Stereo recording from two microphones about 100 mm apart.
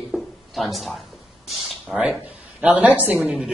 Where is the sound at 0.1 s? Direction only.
Centre (ahead or behind).